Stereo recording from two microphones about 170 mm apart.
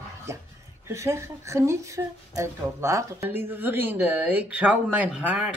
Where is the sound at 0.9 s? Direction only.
15° right (ahead or behind).